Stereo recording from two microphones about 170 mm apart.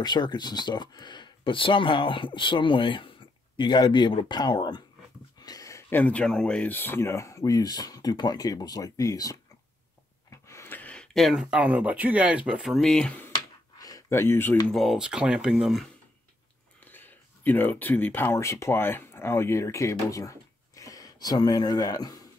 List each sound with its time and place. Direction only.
0.0 s speech: 25° left (ahead or behind)
10.5 s speech: 15° left (ahead or behind)
13.7 s speech: 20° left (ahead or behind)
14.8 s speech: centre (ahead or behind)
16.8 s speech: 10° left (ahead or behind)